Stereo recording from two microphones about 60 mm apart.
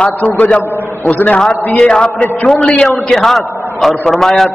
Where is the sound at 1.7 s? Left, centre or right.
Centre.